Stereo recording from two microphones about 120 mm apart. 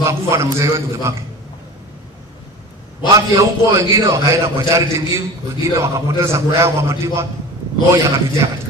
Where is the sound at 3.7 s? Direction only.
25° right (ahead or behind).